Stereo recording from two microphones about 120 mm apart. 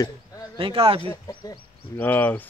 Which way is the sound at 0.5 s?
50° right (ahead or behind).